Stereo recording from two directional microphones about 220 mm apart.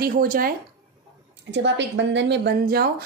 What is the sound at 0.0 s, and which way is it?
Speech, 40° right (ahead or behind).